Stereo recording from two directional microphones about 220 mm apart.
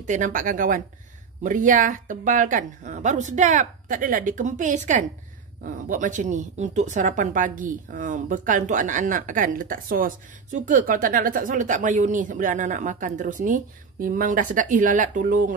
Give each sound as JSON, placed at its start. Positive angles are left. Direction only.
{"t": 0.0, "sound": "speech", "side_deg": -35}